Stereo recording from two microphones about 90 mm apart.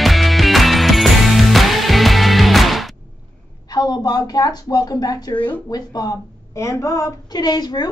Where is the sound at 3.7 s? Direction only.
50° left (ahead or behind).